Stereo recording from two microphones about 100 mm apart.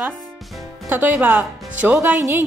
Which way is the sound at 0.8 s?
20° right (ahead or behind).